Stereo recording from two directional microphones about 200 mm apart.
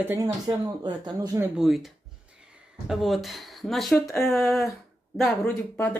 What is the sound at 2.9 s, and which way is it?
Speech, centre (ahead or behind).